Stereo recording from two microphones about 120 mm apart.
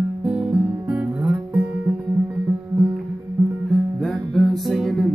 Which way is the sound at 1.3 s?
15° right (ahead or behind).